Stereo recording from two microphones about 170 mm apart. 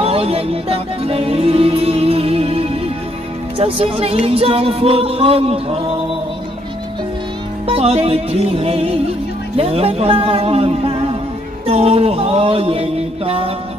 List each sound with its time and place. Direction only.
0.0 s music: 35° right (ahead or behind)
3.5 s speech: 35° right (ahead or behind)
7.6 s speech: 35° right (ahead or behind)